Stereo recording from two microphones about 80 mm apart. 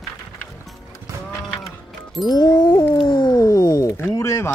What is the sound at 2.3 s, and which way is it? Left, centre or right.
Music, left.